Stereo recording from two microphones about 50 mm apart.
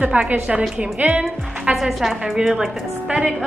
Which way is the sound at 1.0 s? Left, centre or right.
Right.